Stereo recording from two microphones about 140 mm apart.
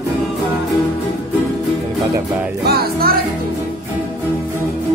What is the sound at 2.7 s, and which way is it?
Music, 90° right.